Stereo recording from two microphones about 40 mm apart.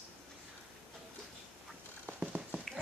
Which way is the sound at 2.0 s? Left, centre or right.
Right.